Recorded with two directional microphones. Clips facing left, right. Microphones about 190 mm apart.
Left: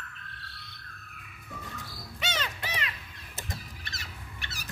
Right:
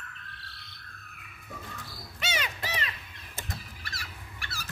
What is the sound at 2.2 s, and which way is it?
Crow, 10° right (ahead or behind).